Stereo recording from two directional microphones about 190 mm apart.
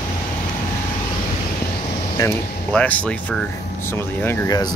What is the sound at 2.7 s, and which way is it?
Speech, 5° left (ahead or behind).